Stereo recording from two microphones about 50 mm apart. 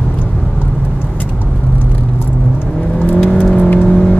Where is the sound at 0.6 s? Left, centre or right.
Left.